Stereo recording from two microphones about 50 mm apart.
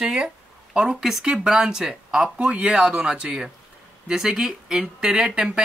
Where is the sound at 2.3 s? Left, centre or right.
Right.